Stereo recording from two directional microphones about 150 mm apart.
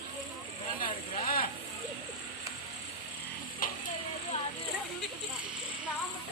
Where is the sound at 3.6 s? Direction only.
65° left (ahead or behind).